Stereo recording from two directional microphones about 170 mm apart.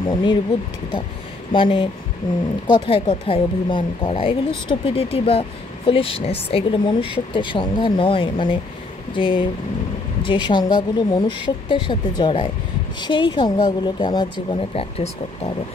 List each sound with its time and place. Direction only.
0.0 s speech: 25° left (ahead or behind)
1.5 s speech: 30° left (ahead or behind)